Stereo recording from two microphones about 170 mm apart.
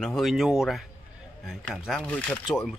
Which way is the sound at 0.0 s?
Centre (ahead or behind).